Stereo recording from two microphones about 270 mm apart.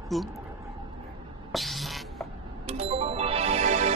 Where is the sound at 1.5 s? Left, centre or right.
Centre.